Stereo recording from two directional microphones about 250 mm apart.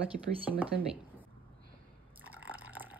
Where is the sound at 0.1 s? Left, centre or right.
Right.